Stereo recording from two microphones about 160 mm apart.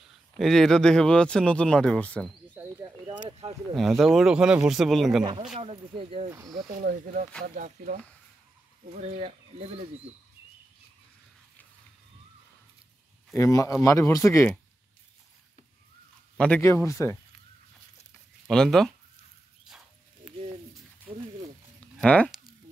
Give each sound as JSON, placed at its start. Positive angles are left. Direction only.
{"t": 0.4, "sound": "speech", "side_deg": 5}
{"t": 2.5, "sound": "a sound", "side_deg": -10}
{"t": 3.1, "sound": "speech", "side_deg": -35}
{"t": 3.7, "sound": "speech", "side_deg": 0}
{"t": 5.2, "sound": "speech", "side_deg": -30}
{"t": 7.4, "sound": "speech", "side_deg": -55}
{"t": 8.9, "sound": "speech", "side_deg": -40}
{"t": 13.4, "sound": "speech", "side_deg": 20}
{"t": 16.3, "sound": "speech", "side_deg": 10}
{"t": 18.5, "sound": "speech", "side_deg": 5}
{"t": 21.7, "sound": "a sound", "side_deg": 5}